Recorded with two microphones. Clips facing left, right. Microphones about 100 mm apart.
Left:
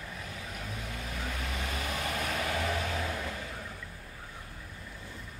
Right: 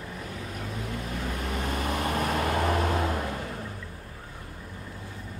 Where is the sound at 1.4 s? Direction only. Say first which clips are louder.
Right 8 dB; 40° right (ahead or behind).